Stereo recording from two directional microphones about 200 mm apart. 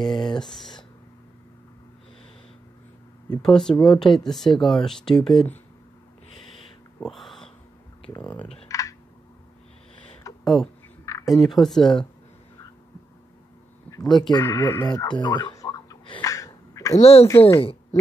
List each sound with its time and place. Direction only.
0.0 s speech: centre (ahead or behind)
3.4 s speech: 5° left (ahead or behind)
7.0 s a sound: centre (ahead or behind)
8.1 s speech: 10° left (ahead or behind)
8.6 s computer keyboard: 15° left (ahead or behind)
10.4 s speech: centre (ahead or behind)
14.0 s speech: centre (ahead or behind)
14.4 s a sound: 15° left (ahead or behind)
17.0 s speech: 30° left (ahead or behind)